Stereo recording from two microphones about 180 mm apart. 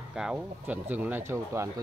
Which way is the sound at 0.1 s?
5° right (ahead or behind).